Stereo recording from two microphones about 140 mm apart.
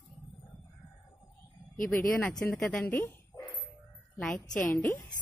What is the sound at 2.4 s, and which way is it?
Speech, 10° left (ahead or behind).